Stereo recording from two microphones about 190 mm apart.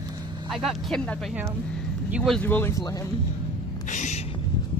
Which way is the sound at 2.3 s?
10° left (ahead or behind).